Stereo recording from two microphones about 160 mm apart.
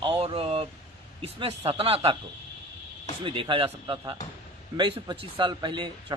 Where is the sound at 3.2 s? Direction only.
35° right (ahead or behind).